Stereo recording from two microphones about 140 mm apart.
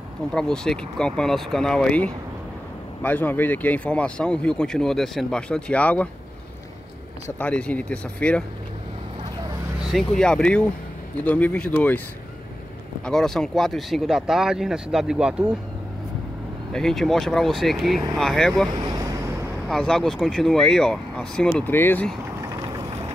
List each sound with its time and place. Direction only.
0.3 s speech: 5° left (ahead or behind)
7.2 s speech: 10° left (ahead or behind)
9.8 s speech: centre (ahead or behind)
13.0 s speech: 5° left (ahead or behind)
16.7 s speech: 5° left (ahead or behind)
18.8 s vehicle: 30° right (ahead or behind)
19.7 s speech: 5° left (ahead or behind)